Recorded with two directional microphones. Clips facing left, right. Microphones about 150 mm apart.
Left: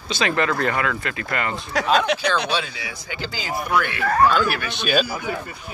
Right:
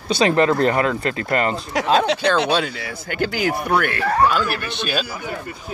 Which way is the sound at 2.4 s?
50° right (ahead or behind).